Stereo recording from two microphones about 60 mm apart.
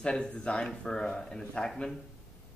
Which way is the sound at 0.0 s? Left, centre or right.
Centre.